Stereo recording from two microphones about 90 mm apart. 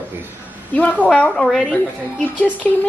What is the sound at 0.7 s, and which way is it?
A woman's voice, 15° left (ahead or behind).